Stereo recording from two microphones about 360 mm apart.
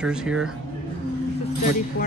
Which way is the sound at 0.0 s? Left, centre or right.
Centre.